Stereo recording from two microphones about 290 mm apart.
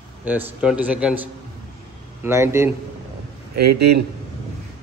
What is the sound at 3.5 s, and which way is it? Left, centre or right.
Speech, right.